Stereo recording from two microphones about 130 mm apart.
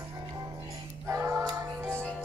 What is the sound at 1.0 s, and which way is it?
Music, 25° right (ahead or behind).